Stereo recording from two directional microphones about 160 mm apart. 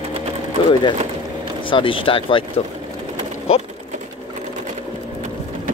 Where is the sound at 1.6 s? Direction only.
35° left (ahead or behind).